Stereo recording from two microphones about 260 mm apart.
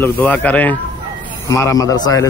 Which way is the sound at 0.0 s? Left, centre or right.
Centre.